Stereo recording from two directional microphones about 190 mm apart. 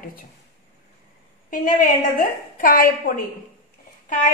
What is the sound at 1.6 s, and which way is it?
A woman's voice, 45° left (ahead or behind).